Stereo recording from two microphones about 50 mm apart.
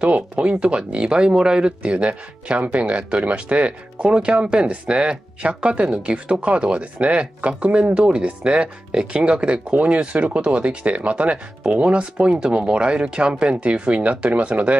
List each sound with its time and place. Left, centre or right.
0.0 s speech: right